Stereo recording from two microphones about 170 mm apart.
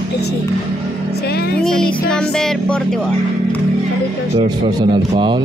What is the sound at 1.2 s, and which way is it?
Speech, 70° left (ahead or behind).